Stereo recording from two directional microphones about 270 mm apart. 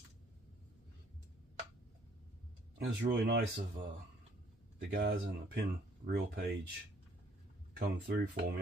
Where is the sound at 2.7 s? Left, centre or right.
Right.